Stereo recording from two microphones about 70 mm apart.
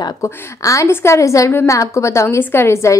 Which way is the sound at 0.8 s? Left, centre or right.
Left.